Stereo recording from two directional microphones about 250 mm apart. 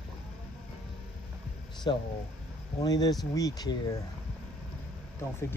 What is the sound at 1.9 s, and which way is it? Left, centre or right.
Speech, centre.